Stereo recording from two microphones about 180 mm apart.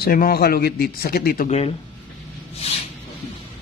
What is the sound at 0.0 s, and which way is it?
Speech, 55° left (ahead or behind).